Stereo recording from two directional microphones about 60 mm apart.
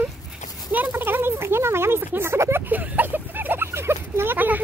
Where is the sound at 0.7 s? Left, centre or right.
Right.